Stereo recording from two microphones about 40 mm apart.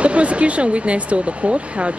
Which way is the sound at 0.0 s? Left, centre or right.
Right.